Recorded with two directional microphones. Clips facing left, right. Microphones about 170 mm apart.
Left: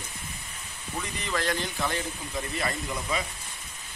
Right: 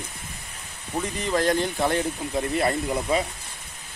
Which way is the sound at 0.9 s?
35° right (ahead or behind).